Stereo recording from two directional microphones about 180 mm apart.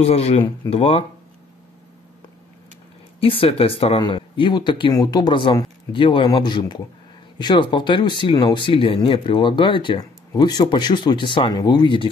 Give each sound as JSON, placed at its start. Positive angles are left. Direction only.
{"t": 0.0, "sound": "speech", "side_deg": 35}
{"t": 3.2, "sound": "speech", "side_deg": 30}